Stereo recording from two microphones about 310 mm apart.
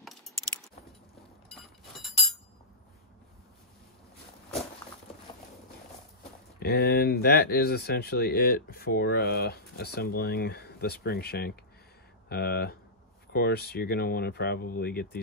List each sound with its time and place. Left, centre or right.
0.0 s keys jangling: centre
1.6 s a sound: centre
6.6 s speech: left